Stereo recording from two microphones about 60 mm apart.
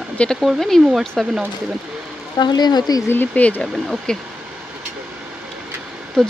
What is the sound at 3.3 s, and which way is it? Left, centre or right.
Speech, left.